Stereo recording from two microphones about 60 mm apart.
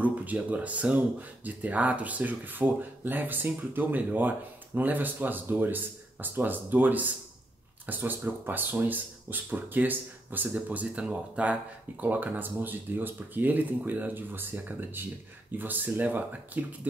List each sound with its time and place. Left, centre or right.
0.0 s speech: right
12.0 s speech: right